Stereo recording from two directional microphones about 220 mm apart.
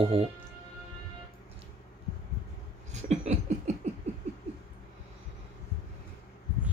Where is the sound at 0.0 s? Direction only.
25° right (ahead or behind).